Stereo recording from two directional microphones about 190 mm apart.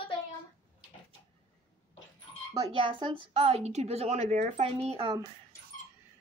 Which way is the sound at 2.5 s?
25° right (ahead or behind).